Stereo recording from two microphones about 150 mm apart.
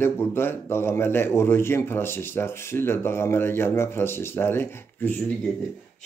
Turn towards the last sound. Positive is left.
turn(degrees=10)  # may be behind; listen again after turning